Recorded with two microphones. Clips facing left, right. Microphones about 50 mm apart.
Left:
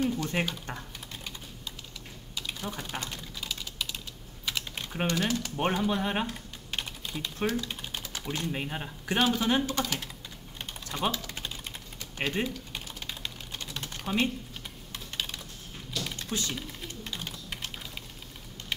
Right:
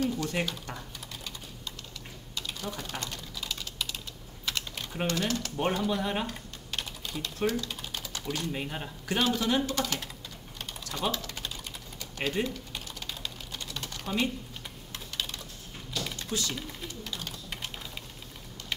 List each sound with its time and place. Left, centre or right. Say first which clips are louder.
0.0 s typing: left 1 dB; centre
4.7 s speech: left 2 dB; centre
6.7 s typing: left 1 dB; centre
9.2 s speech: left 1 dB; centre
10.9 s speech: left 2 dB; centre
11.2 s typing: even; left
12.2 s typing: even; centre
14.0 s speech: left 2 dB; left
15.1 s typing: even; centre
16.3 s speech: even; left
18.6 s typing: left 1 dB; left